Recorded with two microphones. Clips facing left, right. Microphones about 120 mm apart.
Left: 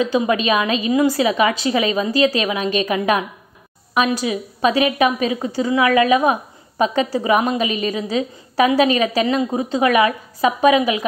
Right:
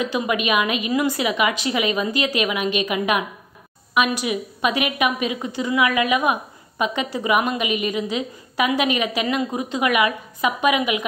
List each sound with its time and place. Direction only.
0.0 s a woman's voice: 30° left (ahead or behind)